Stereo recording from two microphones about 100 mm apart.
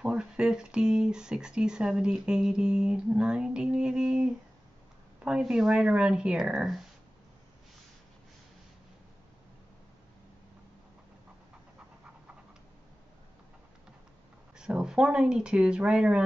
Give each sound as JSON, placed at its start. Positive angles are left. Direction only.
{"t": 0.0, "sound": "speech", "side_deg": -10}
{"t": 14.6, "sound": "speech", "side_deg": -10}